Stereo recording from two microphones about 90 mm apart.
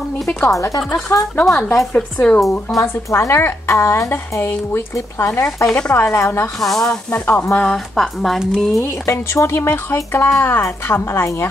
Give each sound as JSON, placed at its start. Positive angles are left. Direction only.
{"t": 0.4, "sound": "speech", "side_deg": 35}
{"t": 0.7, "sound": "a woman's voice", "side_deg": 5}
{"t": 2.1, "sound": "speech", "side_deg": 15}
{"t": 2.7, "sound": "a woman's voice", "side_deg": 30}
{"t": 5.7, "sound": "a woman's voice", "side_deg": 15}
{"t": 6.6, "sound": "a woman's voice", "side_deg": 5}
{"t": 7.1, "sound": "a woman's voice", "side_deg": 20}
{"t": 7.5, "sound": "a woman's voice", "side_deg": 5}
{"t": 8.8, "sound": "a woman's voice", "side_deg": 30}